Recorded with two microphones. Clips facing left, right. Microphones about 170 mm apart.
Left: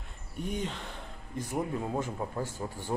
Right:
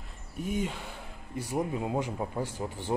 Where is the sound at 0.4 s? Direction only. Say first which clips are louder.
Right 2 dB; 5° right (ahead or behind).